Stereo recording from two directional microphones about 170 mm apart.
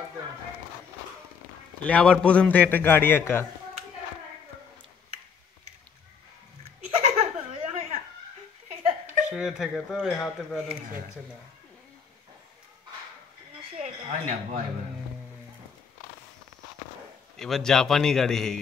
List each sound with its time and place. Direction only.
1.8 s a man's voice: 5° left (ahead or behind)
7.1 s laughter: 35° right (ahead or behind)
9.3 s speech: 5° right (ahead or behind)
13.7 s a sound: 45° right (ahead or behind)
17.4 s a man's voice: 5° left (ahead or behind)